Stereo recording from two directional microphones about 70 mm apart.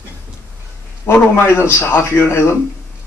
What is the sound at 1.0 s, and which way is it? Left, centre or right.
A man's voice, left.